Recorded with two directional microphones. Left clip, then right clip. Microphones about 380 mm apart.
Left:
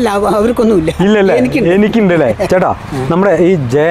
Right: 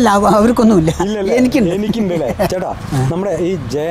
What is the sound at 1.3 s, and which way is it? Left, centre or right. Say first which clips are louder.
Speech: left 1 dB; right.